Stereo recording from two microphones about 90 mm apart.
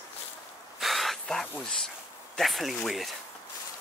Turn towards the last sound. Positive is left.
turn(degrees=0)  # may be behind; listen again after turning